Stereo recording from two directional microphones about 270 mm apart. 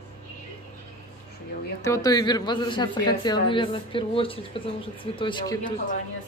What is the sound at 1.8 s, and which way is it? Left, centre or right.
A man's voice, centre.